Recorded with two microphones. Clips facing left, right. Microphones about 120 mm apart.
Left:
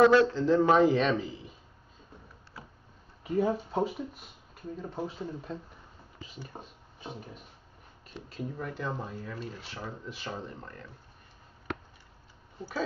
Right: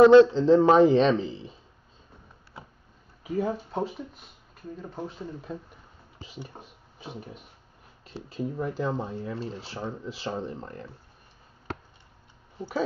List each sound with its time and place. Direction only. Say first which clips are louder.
0.1 s speech: right 8 dB; 25° right (ahead or behind)
2.6 s a sound: right 2 dB; 25° right (ahead or behind)
3.3 s speech: left 1 dB; centre (ahead or behind)
6.5 s a sound: left 1 dB; 5° right (ahead or behind)
8.4 s speech: right 7 dB; 30° right (ahead or behind)
12.5 s speech: right 5 dB; 20° right (ahead or behind)